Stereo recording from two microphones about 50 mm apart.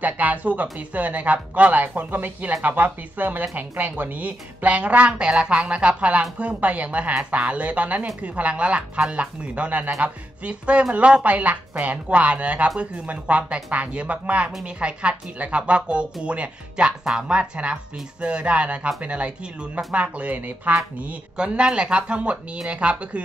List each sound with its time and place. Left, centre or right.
0.0 s a woman's voice: right
21.4 s a woman's voice: centre